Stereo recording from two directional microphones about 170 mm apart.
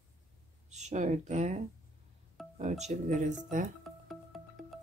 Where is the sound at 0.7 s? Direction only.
40° right (ahead or behind).